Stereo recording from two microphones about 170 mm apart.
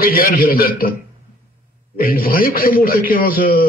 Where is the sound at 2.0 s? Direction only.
60° left (ahead or behind).